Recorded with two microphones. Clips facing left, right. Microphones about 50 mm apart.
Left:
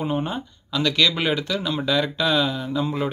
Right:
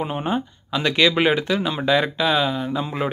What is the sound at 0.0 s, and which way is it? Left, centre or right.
Speech, centre.